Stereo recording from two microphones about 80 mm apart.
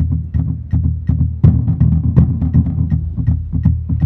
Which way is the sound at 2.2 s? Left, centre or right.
Centre.